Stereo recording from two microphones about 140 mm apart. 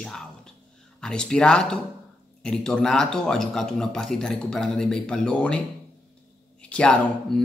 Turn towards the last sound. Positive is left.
turn(degrees=5)  # may be behind; listen again after turning